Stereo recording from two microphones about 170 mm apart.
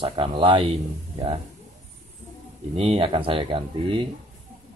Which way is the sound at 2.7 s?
35° right (ahead or behind).